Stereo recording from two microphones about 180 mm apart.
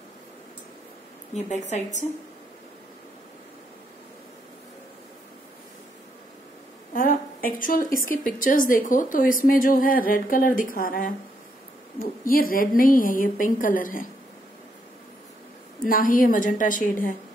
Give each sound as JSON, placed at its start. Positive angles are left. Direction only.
{"t": 1.3, "sound": "a woman's voice", "side_deg": 40}
{"t": 6.9, "sound": "a woman's voice", "side_deg": 50}
{"t": 15.8, "sound": "a woman's voice", "side_deg": 50}